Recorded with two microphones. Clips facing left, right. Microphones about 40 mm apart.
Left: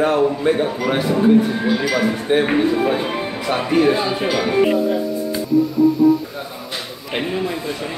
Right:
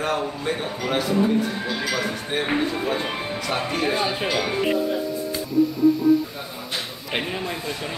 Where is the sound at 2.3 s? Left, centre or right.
Left.